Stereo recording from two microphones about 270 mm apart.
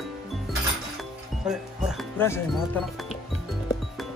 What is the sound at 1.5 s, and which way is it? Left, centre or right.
Speech, centre.